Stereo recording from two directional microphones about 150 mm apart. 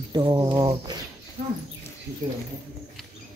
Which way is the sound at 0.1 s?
30° right (ahead or behind).